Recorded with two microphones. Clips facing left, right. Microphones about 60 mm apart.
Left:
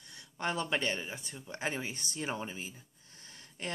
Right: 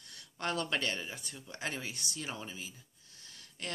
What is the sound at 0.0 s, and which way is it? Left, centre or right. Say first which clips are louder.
Speech: left 2 dB; centre.